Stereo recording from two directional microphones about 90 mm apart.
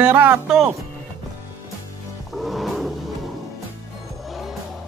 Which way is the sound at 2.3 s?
Centre (ahead or behind).